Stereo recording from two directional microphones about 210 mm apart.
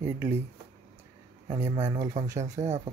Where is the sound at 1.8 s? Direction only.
15° right (ahead or behind).